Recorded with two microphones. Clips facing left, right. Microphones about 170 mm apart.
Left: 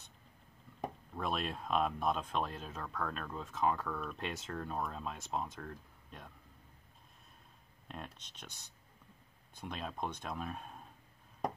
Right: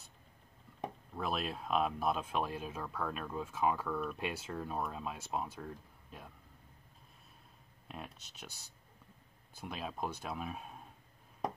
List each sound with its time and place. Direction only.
0.7 s speech: 5° right (ahead or behind)
7.9 s speech: 5° right (ahead or behind)